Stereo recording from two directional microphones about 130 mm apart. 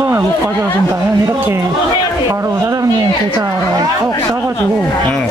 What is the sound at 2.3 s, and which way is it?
Speech, 25° right (ahead or behind).